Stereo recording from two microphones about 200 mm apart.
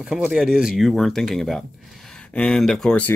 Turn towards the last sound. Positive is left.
turn(degrees=5)  # may be behind; listen again after turning